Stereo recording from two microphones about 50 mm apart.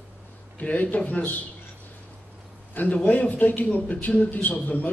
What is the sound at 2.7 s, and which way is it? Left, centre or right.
A man's voice, left.